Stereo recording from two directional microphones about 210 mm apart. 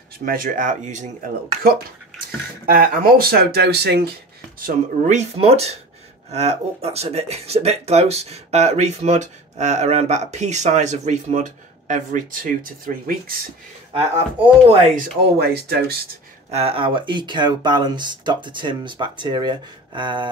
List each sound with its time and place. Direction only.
0.2 s speech: 40° right (ahead or behind)
2.6 s speech: 45° right (ahead or behind)
4.6 s speech: 35° right (ahead or behind)
13.9 s speech: 30° right (ahead or behind)
15.3 s speech: 50° right (ahead or behind)
16.4 s speech: 30° right (ahead or behind)